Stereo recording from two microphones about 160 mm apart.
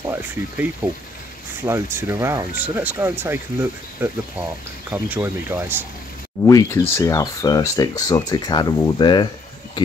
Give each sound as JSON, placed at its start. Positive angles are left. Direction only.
{"t": 0.0, "sound": "speech", "side_deg": -15}
{"t": 4.9, "sound": "speech", "side_deg": -15}
{"t": 6.4, "sound": "speech", "side_deg": 20}